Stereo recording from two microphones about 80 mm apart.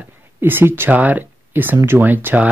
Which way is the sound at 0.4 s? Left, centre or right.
Right.